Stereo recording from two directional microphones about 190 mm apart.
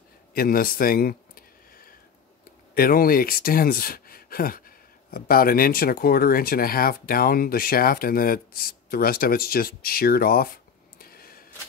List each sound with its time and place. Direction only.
0.3 s a man's voice: 50° left (ahead or behind)
2.7 s speech: 50° left (ahead or behind)
11.0 s a sound: 50° left (ahead or behind)